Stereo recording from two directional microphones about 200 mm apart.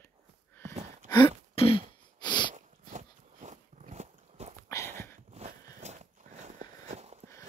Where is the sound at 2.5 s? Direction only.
35° right (ahead or behind).